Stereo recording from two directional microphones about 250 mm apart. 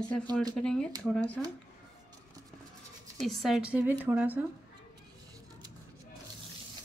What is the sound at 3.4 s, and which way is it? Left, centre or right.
A woman's voice, centre.